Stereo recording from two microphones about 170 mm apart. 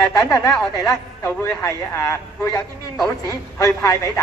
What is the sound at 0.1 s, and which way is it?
A woman's voice, 20° left (ahead or behind).